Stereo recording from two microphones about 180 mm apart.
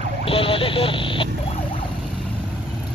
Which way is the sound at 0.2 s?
30° left (ahead or behind).